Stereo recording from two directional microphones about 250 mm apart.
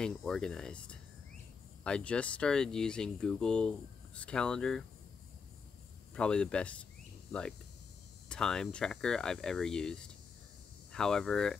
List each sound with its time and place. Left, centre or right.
0.0 s speech: centre
6.1 s speech: centre
8.3 s speech: centre